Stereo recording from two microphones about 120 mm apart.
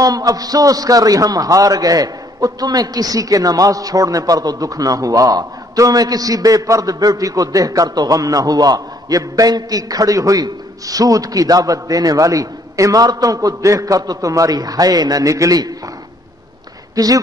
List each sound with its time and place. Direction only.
0.0 s a man's voice: 30° right (ahead or behind)
16.9 s speech: 30° right (ahead or behind)